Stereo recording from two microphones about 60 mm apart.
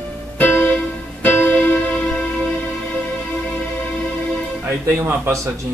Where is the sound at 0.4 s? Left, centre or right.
Left.